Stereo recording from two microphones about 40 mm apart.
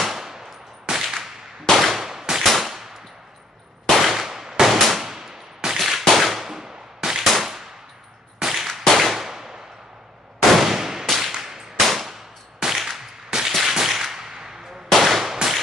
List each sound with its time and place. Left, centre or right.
0.0 s machine gun: centre
1.7 s clang: centre
2.4 s machine gun: centre
3.9 s a sound: centre
4.7 s gunshot: centre
5.0 s gunshot: centre
7.2 s a sound: centre
8.4 s clang: centre
8.9 s a sound: centre
11.1 s whip: centre
11.3 s whip: centre
11.9 s a sound: centre
13.5 s gunshot: centre
14.9 s gunshot: centre